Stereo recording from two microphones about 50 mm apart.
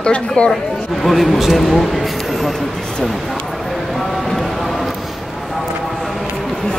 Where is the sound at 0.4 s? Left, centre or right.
Left.